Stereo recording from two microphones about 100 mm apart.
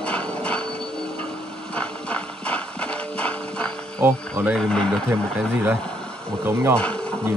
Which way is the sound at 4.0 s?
25° right (ahead or behind).